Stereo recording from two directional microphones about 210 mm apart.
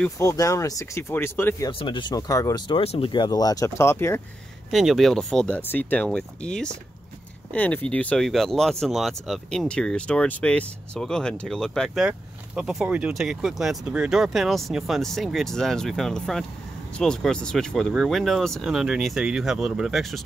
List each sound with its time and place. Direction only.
0.0 s speech: 15° left (ahead or behind)
1.7 s speech: 25° left (ahead or behind)
4.6 s speech: centre (ahead or behind)